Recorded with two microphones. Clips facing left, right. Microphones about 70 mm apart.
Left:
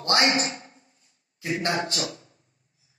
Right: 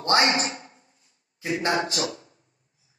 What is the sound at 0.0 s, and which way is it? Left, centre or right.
Speech, right.